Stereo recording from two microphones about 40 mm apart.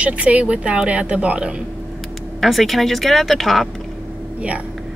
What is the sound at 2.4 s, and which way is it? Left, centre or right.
Speech, centre.